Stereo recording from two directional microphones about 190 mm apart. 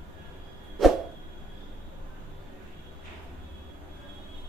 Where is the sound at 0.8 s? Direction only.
Centre (ahead or behind).